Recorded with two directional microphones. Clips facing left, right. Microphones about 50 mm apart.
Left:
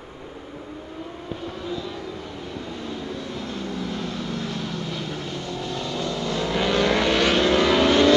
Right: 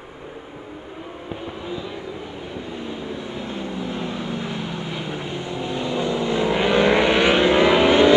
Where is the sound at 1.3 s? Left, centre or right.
Right.